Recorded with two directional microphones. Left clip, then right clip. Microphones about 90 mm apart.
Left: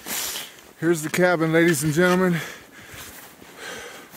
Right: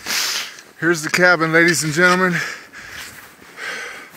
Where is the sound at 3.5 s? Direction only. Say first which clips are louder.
Right 8 dB; 70° left (ahead or behind).